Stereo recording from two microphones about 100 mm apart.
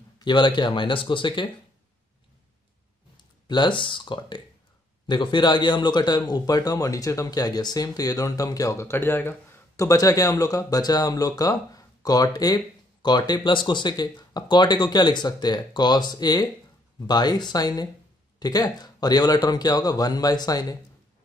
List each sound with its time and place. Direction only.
0.2 s speech: 50° left (ahead or behind)
3.4 s a man's voice: 50° left (ahead or behind); by 9.8 s 20° left (ahead or behind)
9.8 s a man's voice: 35° left (ahead or behind)